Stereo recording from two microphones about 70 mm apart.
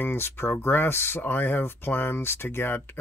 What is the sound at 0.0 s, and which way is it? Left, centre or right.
Speech, left.